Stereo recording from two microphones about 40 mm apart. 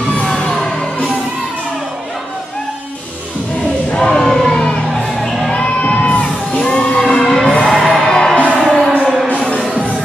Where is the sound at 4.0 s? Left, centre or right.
Centre.